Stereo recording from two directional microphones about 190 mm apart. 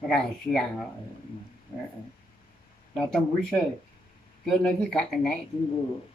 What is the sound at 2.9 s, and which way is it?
Speech, 5° left (ahead or behind).